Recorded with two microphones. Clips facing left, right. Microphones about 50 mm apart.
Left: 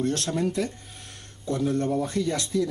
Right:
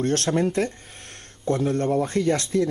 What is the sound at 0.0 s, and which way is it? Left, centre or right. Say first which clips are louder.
Speech: right 4 dB; right.